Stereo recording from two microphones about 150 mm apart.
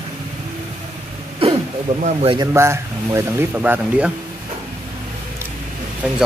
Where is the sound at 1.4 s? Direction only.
40° right (ahead or behind).